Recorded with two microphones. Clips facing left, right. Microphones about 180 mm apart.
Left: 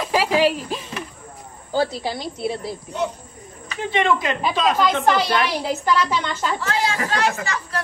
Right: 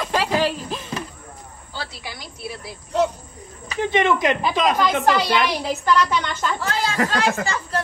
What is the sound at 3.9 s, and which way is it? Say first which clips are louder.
Speech: right 1 dB; 20° right (ahead or behind).